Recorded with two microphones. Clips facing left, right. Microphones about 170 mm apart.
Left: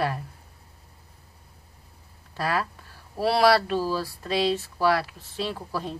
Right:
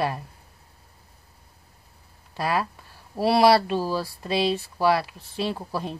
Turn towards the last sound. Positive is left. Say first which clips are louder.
# right 2 dB
turn(degrees=-20)  # may be behind; listen again after turning